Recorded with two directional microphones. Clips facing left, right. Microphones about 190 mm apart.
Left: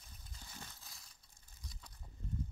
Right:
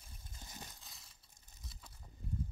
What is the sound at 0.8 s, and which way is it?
Crushing, centre (ahead or behind).